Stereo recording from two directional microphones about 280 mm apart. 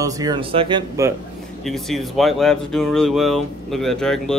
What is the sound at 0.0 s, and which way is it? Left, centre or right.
Speech, centre.